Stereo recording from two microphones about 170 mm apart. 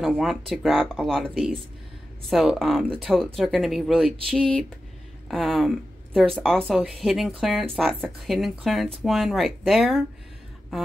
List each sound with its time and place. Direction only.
0.0 s a woman's voice: centre (ahead or behind)